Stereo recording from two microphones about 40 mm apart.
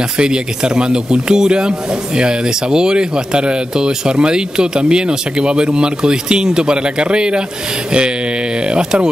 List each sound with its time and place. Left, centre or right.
0.2 s speech: right
8.6 s speech: right